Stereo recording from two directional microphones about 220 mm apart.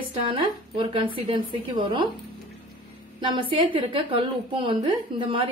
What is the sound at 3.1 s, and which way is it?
A woman's voice, 20° right (ahead or behind).